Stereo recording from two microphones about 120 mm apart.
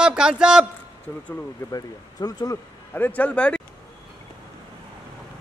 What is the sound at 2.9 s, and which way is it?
Speech, 15° left (ahead or behind).